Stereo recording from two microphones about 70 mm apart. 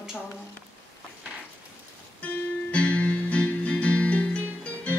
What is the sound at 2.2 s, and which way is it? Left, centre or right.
Music, centre.